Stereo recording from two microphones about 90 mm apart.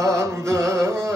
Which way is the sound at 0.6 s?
35° right (ahead or behind).